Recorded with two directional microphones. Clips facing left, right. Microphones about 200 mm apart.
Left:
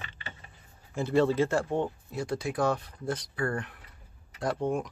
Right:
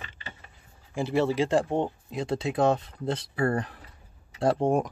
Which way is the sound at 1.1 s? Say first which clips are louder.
Right 1 dB; 10° right (ahead or behind).